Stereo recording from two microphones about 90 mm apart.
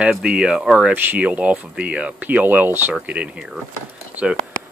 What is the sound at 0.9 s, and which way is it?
Speech, 20° right (ahead or behind).